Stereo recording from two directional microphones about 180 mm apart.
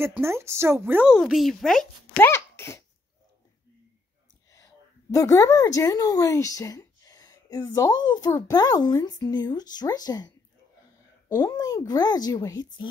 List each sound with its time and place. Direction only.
0.0 s a woman's voice: 15° right (ahead or behind)
1.1 s speech: centre (ahead or behind)
5.1 s a woman's voice: 20° left (ahead or behind)